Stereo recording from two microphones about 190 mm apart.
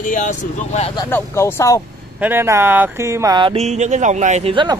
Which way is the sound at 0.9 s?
15° left (ahead or behind).